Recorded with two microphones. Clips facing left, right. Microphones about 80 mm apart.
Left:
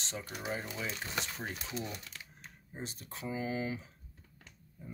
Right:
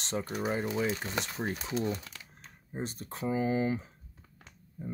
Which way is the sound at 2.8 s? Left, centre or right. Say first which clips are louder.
Right 7 dB; right.